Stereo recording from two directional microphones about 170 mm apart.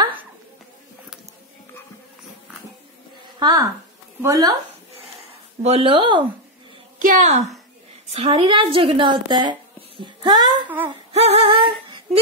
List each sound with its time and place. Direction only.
3.3 s a woman's voice: 25° right (ahead or behind)
5.6 s speech: 35° right (ahead or behind)
7.0 s a woman's voice: 50° right (ahead or behind)
8.1 s a woman's voice: 35° right (ahead or behind)
10.9 s female singing: 35° right (ahead or behind)